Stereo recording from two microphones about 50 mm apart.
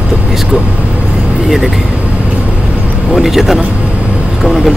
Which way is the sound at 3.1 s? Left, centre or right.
Centre.